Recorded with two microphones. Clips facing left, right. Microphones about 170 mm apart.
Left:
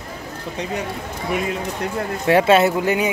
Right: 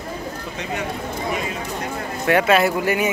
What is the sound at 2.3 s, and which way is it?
Speech, 30° left (ahead or behind).